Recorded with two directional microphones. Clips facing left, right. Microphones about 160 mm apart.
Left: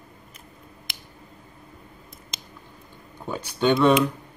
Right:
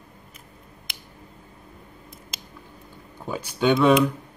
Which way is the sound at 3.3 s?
5° right (ahead or behind).